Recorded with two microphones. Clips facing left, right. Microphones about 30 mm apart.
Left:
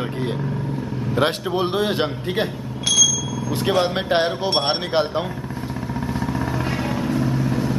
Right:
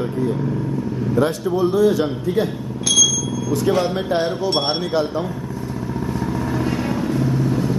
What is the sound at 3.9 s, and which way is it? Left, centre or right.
Speech, left.